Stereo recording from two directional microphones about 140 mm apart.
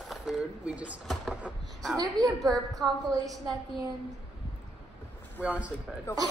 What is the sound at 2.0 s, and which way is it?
Speech, 25° right (ahead or behind).